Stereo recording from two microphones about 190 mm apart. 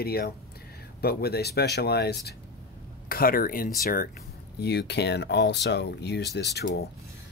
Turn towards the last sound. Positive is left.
turn(degrees=60)  # may be behind; listen again after turning